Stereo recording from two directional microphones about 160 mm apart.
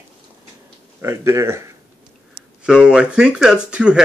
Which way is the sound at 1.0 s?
20° right (ahead or behind).